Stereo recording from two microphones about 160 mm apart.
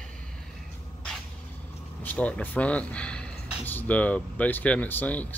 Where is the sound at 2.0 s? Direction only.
10° left (ahead or behind).